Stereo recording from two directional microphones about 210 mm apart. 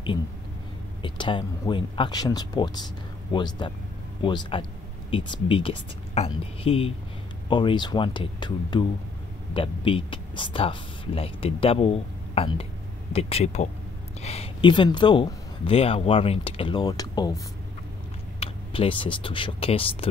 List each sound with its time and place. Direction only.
1.0 s speech: 20° left (ahead or behind)
18.4 s speech: 25° left (ahead or behind)